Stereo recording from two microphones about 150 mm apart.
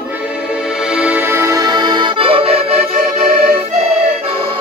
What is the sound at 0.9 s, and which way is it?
Accordion, 10° right (ahead or behind).